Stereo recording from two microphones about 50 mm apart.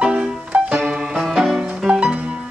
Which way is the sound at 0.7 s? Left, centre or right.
Centre.